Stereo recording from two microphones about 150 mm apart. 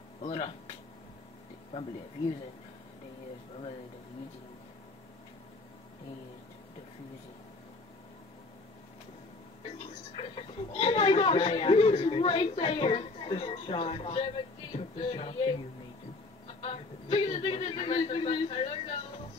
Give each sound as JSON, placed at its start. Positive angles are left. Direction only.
{"t": 0.2, "sound": "speech", "side_deg": 45}
{"t": 10.1, "sound": "speech", "side_deg": 35}
{"t": 16.6, "sound": "speech", "side_deg": 35}